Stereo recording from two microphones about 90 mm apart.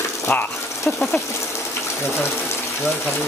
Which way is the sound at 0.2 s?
25° left (ahead or behind).